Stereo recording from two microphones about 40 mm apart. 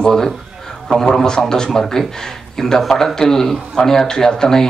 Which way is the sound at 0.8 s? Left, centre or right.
Centre.